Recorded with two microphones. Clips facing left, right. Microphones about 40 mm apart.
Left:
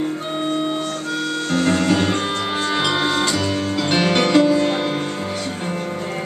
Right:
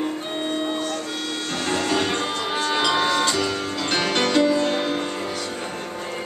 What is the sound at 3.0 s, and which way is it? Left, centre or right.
Music, centre.